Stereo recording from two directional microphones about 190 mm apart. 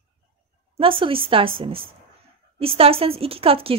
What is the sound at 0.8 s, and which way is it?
Speech, 30° right (ahead or behind).